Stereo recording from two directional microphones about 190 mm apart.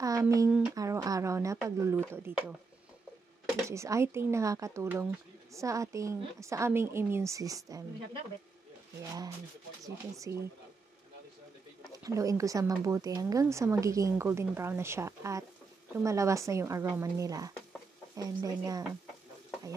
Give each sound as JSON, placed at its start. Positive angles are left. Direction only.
{"t": 0.0, "sound": "speech", "side_deg": -20}
{"t": 0.5, "sound": "speech", "side_deg": -5}
{"t": 0.7, "sound": "speech", "side_deg": -15}
{"t": 3.6, "sound": "speech", "side_deg": -15}
{"t": 10.3, "sound": "speech", "side_deg": -15}
{"t": 11.9, "sound": "speech", "side_deg": -15}